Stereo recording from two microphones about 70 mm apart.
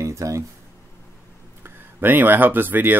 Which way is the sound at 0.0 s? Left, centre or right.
Right.